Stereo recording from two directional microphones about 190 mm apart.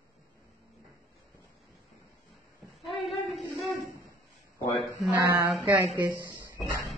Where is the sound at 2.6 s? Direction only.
Centre (ahead or behind).